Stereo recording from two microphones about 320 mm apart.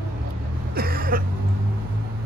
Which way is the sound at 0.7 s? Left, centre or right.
Right.